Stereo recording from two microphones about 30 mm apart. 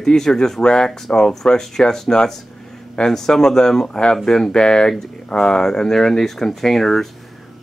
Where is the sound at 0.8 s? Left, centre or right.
Centre.